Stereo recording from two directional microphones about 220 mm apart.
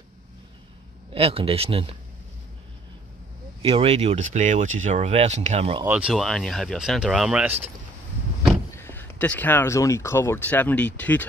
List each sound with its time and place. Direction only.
1.1 s speech: 25° right (ahead or behind)
3.6 s speech: 25° right (ahead or behind)
5.9 s speech: 5° right (ahead or behind)
8.7 s speech: 10° left (ahead or behind)